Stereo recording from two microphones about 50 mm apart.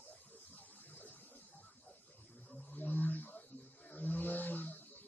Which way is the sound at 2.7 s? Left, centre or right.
Left.